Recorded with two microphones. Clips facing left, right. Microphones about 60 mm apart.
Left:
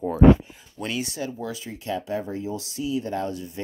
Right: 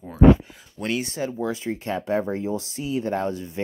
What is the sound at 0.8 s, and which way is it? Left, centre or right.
Speech, right.